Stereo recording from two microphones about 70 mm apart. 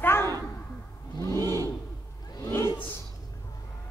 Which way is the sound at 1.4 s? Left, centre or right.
Right.